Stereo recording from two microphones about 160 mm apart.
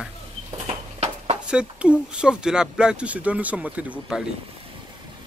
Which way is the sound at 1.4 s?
5° right (ahead or behind).